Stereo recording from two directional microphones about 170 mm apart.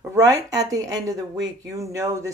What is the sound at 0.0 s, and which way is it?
Speech, 20° right (ahead or behind).